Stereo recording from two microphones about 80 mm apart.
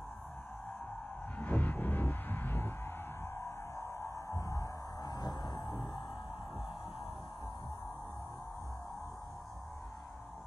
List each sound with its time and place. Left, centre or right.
1.4 s music: left